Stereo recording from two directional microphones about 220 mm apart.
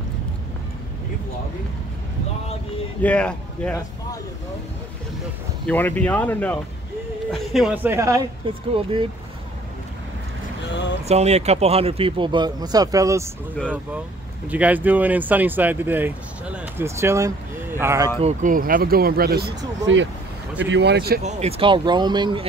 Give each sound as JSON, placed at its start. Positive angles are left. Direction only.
{"t": 3.0, "sound": "speech", "side_deg": 5}
{"t": 5.7, "sound": "speech", "side_deg": 5}
{"t": 10.7, "sound": "speech", "side_deg": 55}
{"t": 11.1, "sound": "speech", "side_deg": -30}
{"t": 14.5, "sound": "speech", "side_deg": -5}
{"t": 18.2, "sound": "speech", "side_deg": -35}
{"t": 19.9, "sound": "speech", "side_deg": -60}
{"t": 21.2, "sound": "speech", "side_deg": -30}